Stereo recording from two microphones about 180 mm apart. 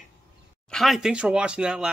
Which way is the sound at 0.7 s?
Centre (ahead or behind).